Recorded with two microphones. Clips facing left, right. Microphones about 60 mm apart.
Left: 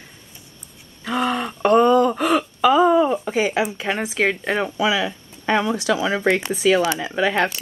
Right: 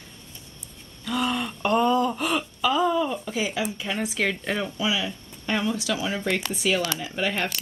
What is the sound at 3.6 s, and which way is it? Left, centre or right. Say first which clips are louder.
Speech: left 5 dB; left.